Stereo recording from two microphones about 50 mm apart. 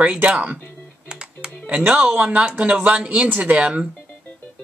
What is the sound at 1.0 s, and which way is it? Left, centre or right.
Music, centre.